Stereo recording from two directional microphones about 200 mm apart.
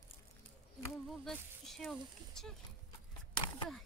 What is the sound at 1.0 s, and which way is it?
Speech, centre (ahead or behind).